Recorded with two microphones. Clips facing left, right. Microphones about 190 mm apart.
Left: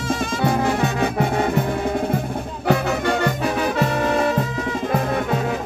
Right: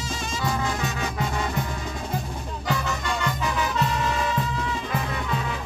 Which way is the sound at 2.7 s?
60° left (ahead or behind).